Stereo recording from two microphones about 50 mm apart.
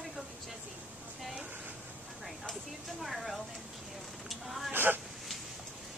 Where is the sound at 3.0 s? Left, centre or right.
Centre.